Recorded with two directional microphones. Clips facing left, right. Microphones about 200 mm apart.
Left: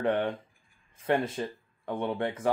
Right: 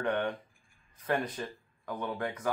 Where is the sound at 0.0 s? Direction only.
30° left (ahead or behind).